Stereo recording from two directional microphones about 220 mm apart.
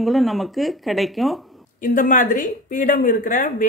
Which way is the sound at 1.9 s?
35° left (ahead or behind).